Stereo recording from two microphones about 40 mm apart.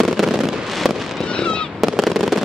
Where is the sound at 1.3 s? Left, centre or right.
Left.